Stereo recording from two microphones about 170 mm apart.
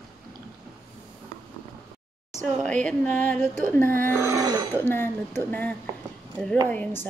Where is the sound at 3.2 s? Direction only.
10° left (ahead or behind).